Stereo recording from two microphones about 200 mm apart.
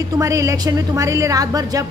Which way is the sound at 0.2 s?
15° right (ahead or behind).